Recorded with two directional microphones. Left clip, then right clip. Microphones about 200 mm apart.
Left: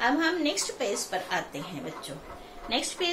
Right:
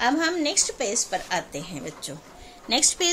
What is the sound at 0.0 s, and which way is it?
Speech, 50° right (ahead or behind).